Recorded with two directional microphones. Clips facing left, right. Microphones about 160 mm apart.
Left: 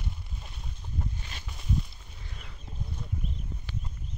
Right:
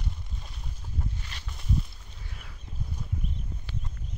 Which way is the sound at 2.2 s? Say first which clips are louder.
Even; centre (ahead or behind).